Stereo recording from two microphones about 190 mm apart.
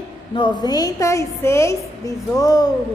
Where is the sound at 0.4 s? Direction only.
25° left (ahead or behind).